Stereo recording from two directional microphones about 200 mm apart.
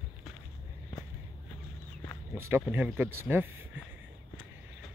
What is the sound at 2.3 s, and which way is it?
Speech, 10° right (ahead or behind).